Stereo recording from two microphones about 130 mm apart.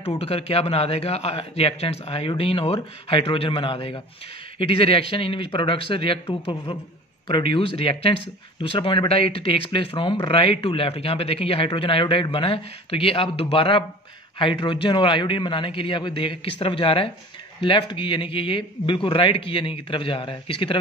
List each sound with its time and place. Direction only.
0.0 s speech: 50° left (ahead or behind)